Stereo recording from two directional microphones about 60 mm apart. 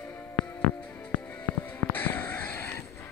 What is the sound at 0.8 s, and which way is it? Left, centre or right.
Music, left.